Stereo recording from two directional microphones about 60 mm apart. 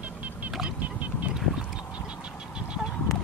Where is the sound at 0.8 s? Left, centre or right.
Right.